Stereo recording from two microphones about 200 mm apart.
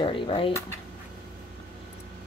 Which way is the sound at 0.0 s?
25° left (ahead or behind).